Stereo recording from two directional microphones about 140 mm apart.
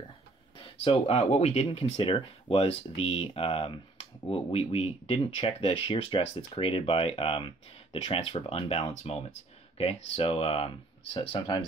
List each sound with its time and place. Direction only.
0.6 s speech: 40° left (ahead or behind)
11.1 s speech: 30° left (ahead or behind)